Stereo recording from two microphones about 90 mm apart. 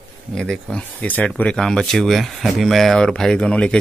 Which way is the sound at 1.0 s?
15° left (ahead or behind).